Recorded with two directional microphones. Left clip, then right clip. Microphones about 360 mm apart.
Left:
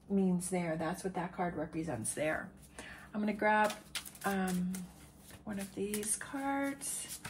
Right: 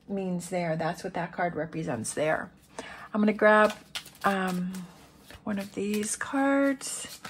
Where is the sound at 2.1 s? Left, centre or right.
Centre.